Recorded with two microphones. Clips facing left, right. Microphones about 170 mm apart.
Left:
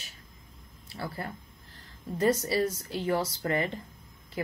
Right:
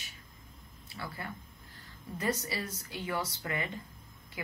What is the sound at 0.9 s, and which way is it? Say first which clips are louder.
Speech: left 5 dB; 35° left (ahead or behind).